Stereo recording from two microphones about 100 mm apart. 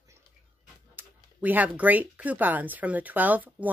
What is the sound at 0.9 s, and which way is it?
Speech, 15° right (ahead or behind).